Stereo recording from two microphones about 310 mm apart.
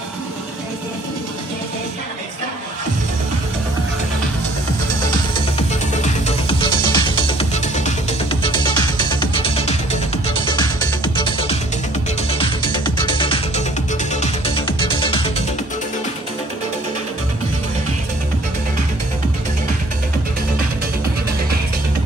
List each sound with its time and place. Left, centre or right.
5.1 s music: centre